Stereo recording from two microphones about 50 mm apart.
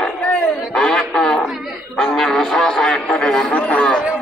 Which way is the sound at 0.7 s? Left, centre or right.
Centre.